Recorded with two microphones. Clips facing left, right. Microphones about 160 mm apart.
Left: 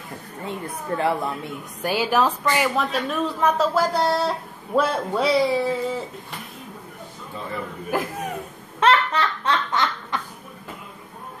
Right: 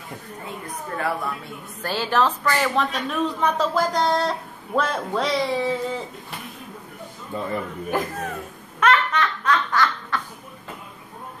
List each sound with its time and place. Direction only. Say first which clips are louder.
0.5 s a woman's voice: left 5 dB; 25° left (ahead or behind)
1.8 s a woman's voice: left 1 dB; 10° left (ahead or behind)
7.9 s a woman's voice: even; 5° left (ahead or behind)
8.7 s a sound: left 1 dB; 30° left (ahead or behind)